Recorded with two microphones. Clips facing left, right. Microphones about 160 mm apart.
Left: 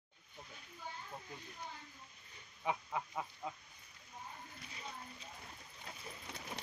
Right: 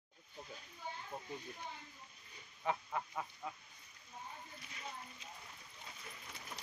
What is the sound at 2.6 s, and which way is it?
Duck, 10° left (ahead or behind).